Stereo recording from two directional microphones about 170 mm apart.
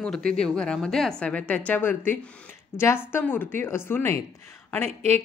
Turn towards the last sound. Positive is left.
turn(degrees=-40)  # may be behind; listen again after turning